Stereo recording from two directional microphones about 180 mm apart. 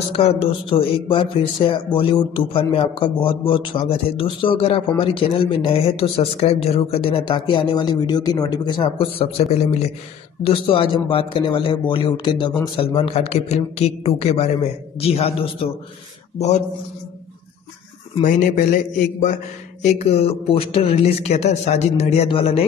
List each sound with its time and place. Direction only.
0.1 s a man's voice: 30° left (ahead or behind)
18.2 s a man's voice: 45° left (ahead or behind)